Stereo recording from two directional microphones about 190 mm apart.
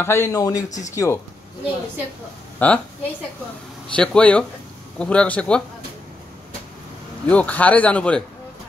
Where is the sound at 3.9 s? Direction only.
5° left (ahead or behind).